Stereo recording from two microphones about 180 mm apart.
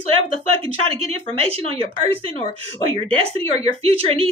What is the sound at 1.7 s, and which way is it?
Speech, 30° right (ahead or behind).